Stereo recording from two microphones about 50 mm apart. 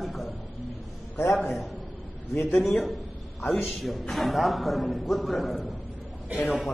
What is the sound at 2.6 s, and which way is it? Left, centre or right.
A man's voice, centre.